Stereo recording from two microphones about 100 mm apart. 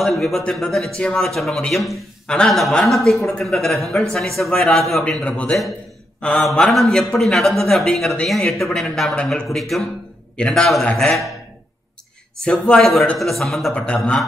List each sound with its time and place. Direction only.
0.0 s a man's voice: centre (ahead or behind)
5.0 s a man's voice: 10° left (ahead or behind)
12.4 s a man's voice: 5° left (ahead or behind)